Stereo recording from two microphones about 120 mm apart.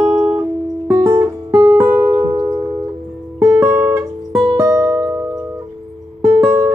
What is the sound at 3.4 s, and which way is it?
Guitar, 25° right (ahead or behind).